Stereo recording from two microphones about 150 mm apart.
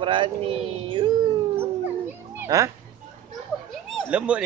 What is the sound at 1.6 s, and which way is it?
Howl, 15° right (ahead or behind).